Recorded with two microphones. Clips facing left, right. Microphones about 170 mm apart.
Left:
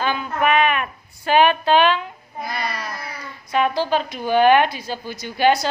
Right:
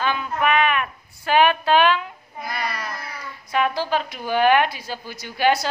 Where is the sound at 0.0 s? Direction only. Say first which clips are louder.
Left 1 dB; 35° left (ahead or behind).